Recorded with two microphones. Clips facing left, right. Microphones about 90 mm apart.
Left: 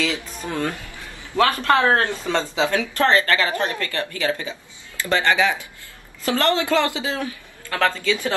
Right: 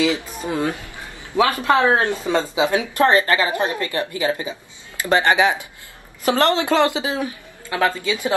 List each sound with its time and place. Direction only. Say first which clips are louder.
0.0 s speech: right 5 dB; 15° right (ahead or behind)